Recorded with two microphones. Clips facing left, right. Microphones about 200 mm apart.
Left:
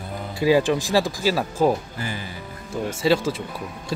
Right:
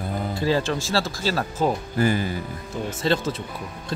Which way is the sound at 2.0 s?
45° right (ahead or behind).